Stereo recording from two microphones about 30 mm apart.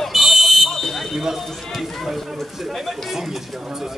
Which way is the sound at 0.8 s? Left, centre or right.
Centre.